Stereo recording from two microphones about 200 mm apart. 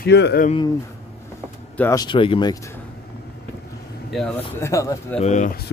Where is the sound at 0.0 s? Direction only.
55° left (ahead or behind).